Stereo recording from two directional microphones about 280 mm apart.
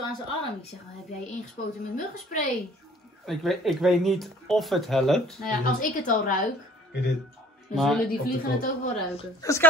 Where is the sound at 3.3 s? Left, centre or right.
Centre.